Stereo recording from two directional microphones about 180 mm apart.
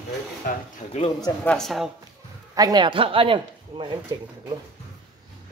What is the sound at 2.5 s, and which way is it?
Speech, 20° right (ahead or behind).